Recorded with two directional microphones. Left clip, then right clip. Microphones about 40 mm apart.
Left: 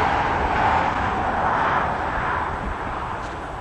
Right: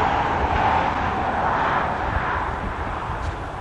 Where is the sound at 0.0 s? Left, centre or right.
Left.